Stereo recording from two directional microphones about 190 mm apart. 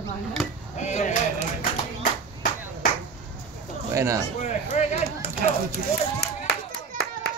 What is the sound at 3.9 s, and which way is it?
Speech, 15° right (ahead or behind).